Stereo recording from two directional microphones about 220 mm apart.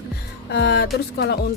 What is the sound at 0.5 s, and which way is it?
Music, 50° left (ahead or behind).